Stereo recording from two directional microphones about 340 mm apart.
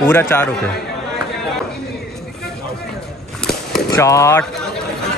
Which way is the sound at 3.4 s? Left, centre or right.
Centre.